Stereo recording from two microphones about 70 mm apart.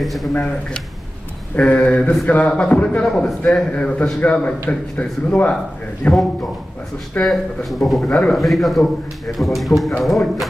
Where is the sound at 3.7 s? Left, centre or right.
Left.